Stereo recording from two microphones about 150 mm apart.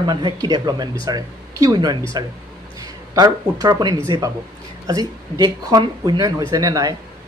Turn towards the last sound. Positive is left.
turn(degrees=-25)  # may be behind; listen again after turning